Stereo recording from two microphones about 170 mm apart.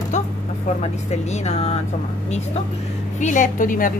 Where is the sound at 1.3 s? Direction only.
40° left (ahead or behind).